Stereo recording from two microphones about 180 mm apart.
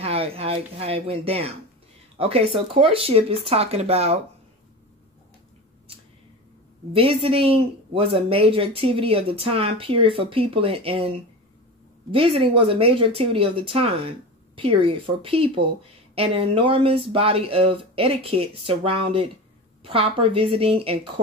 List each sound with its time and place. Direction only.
0.0 s a sound: 35° right (ahead or behind)
2.1 s speech: 30° right (ahead or behind)
6.9 s speech: 30° right (ahead or behind)